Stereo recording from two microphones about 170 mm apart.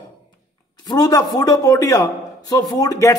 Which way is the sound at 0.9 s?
20° left (ahead or behind).